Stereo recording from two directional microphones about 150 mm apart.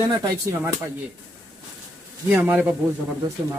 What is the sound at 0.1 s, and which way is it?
Speech, 25° right (ahead or behind).